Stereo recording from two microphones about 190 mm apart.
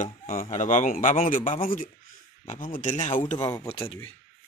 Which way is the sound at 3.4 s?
15° left (ahead or behind).